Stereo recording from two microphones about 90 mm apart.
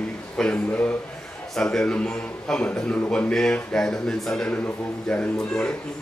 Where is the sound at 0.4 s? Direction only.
10° left (ahead or behind).